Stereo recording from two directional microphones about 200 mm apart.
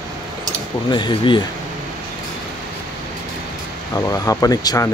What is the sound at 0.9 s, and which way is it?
Speech, 25° left (ahead or behind).